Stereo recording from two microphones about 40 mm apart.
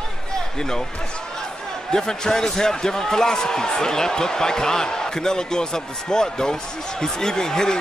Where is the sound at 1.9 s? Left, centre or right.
Centre.